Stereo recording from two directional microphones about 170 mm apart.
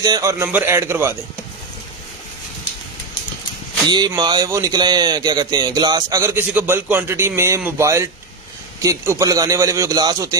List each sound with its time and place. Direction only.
0.0 s a man's voice: 20° right (ahead or behind)
3.8 s speech: 25° right (ahead or behind)